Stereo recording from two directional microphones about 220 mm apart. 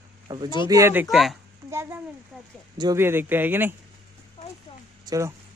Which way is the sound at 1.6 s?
10° right (ahead or behind).